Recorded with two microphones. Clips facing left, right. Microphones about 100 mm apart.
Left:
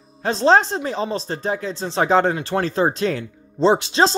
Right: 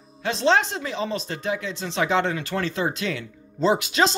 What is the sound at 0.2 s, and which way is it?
Speech, 35° left (ahead or behind).